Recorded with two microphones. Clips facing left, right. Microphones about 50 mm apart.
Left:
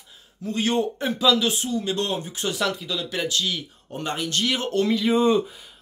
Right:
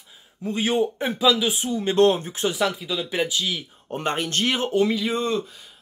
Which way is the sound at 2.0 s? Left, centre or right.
Right.